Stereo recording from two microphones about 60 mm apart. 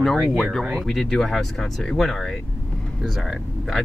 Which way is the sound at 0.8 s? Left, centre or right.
Centre.